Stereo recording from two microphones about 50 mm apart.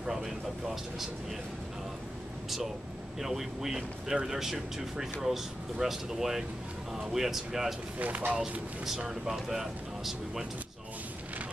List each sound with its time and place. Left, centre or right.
0.0 s speech: centre
3.2 s speech: centre
8.0 s speech: right
8.8 s speech: centre